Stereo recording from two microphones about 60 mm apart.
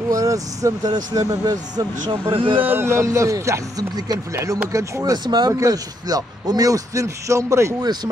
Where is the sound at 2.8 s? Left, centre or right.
Right.